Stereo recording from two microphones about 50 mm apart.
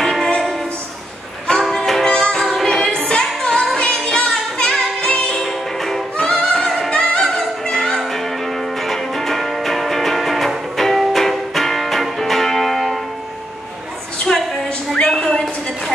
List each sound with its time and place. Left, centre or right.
0.0 s music: centre
1.5 s music: centre
5.4 s music: centre
14.3 s a sound: centre